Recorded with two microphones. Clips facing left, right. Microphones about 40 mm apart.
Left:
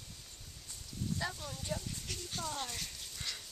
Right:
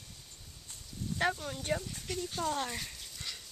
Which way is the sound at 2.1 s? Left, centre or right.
Centre.